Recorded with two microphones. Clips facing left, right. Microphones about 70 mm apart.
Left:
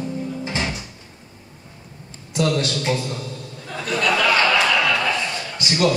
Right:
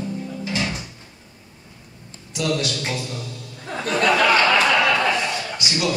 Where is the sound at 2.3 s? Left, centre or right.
Left.